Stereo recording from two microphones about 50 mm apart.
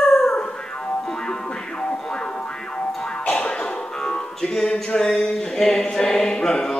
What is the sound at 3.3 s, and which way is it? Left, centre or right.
Music, centre.